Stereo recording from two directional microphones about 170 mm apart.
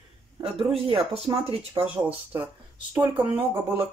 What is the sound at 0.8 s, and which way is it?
Speech, 35° right (ahead or behind).